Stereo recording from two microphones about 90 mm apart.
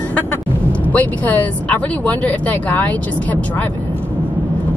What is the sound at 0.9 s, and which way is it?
Speech, 15° left (ahead or behind).